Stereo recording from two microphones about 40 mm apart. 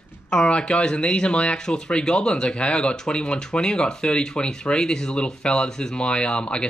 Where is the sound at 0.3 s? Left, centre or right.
Left.